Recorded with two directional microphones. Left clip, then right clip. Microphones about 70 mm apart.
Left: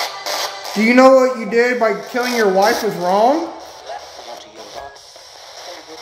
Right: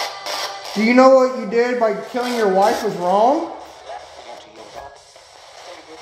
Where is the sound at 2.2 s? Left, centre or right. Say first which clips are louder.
Left 2 dB; left.